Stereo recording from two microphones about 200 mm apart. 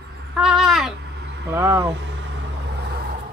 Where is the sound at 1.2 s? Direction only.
55° right (ahead or behind).